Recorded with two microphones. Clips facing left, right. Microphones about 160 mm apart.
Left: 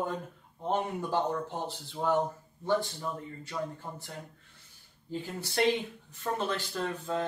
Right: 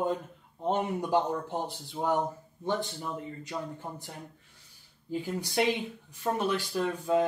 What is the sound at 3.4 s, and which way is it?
Speech, 15° right (ahead or behind).